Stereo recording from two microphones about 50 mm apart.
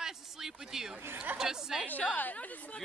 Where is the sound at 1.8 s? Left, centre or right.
Left.